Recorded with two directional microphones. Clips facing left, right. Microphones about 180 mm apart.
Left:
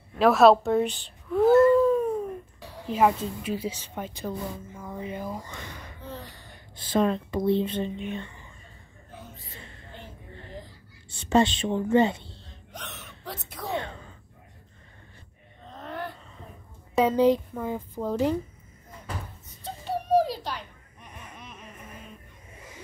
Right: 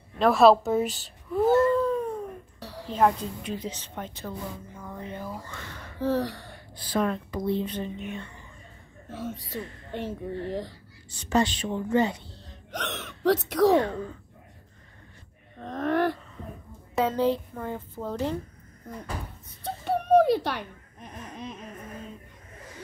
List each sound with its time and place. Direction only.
0.2 s a woman's voice: centre (ahead or behind)
1.3 s a sound: centre (ahead or behind)
2.9 s a woman's voice: 5° left (ahead or behind)
5.9 s gasp: 80° right
6.8 s speech: 25° left (ahead or behind)
9.1 s a woman's voice: 90° right
11.1 s speech: 25° left (ahead or behind)
12.7 s speech: 90° right
15.6 s speech: 80° right
16.9 s a woman's voice: 15° left (ahead or behind)
19.6 s a sound: 60° right (ahead or behind)
21.4 s a sound: 30° right (ahead or behind)